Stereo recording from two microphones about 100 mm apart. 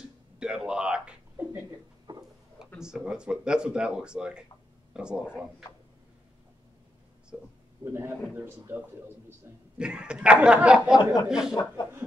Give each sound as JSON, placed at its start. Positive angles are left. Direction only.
{"t": 0.4, "sound": "speech", "side_deg": -10}
{"t": 2.1, "sound": "a sound", "side_deg": -45}
{"t": 2.8, "sound": "speech", "side_deg": -5}
{"t": 7.8, "sound": "a man's voice", "side_deg": -25}
{"t": 9.8, "sound": "speech", "side_deg": -10}